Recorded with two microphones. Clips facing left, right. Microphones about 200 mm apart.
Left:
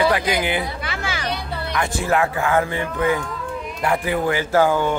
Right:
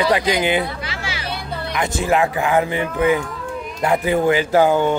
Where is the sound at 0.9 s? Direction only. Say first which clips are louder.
Left 2 dB; 50° left (ahead or behind).